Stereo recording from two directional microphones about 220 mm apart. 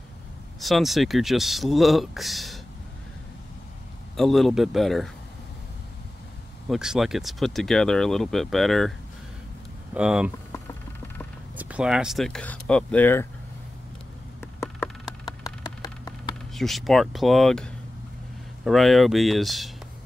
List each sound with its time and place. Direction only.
0.6 s speech: centre (ahead or behind)
4.2 s speech: centre (ahead or behind)
6.7 s speech: centre (ahead or behind)
9.9 s speech: 5° right (ahead or behind)
10.5 s a sound: 10° left (ahead or behind)
11.5 s speech: 5° right (ahead or behind)
14.6 s a sound: 15° left (ahead or behind)
16.5 s speech: centre (ahead or behind)